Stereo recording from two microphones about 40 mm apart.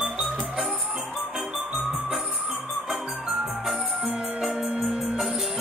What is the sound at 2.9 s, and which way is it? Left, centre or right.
Music, centre.